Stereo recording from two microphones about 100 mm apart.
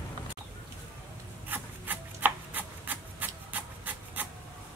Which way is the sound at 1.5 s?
20° right (ahead or behind).